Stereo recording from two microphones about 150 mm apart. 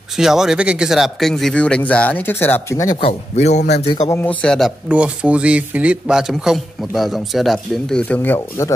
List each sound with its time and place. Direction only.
0.1 s speech: 5° right (ahead or behind); by 2.9 s 15° left (ahead or behind)
3.0 s speech: 45° left (ahead or behind)
4.2 s speech: 10° left (ahead or behind)